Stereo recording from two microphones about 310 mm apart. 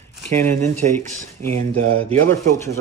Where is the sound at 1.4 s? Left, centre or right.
Right.